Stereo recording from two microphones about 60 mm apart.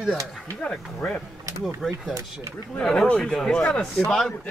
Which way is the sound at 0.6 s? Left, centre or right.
Centre.